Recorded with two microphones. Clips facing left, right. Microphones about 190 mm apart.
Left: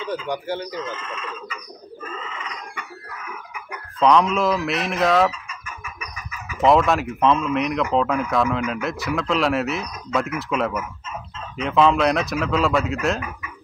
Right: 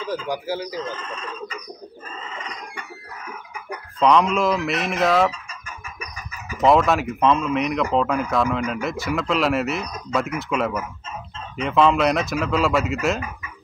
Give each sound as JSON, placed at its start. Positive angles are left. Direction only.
{"t": 0.3, "sound": "speech", "side_deg": -5}
{"t": 0.7, "sound": "speech", "side_deg": -35}
{"t": 2.1, "sound": "a sound", "side_deg": -35}
{"t": 4.0, "sound": "speech", "side_deg": 0}
{"t": 5.5, "sound": "chicken", "side_deg": -35}
{"t": 6.6, "sound": "speech", "side_deg": 0}